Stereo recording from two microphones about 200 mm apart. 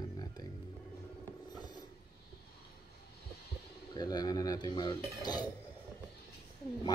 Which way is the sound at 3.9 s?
20° left (ahead or behind).